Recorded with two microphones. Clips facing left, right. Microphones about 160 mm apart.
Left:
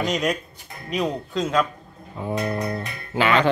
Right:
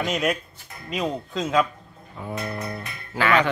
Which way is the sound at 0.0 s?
5° right (ahead or behind).